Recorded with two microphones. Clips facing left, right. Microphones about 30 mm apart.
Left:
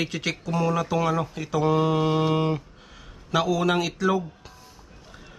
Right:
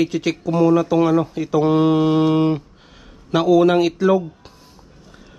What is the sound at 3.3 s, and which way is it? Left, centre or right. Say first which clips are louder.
Speech: right 8 dB; centre.